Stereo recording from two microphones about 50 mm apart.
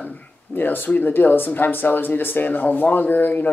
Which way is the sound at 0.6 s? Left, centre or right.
Left.